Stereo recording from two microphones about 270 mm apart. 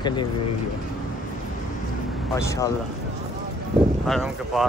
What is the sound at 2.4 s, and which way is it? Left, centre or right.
Speech, centre.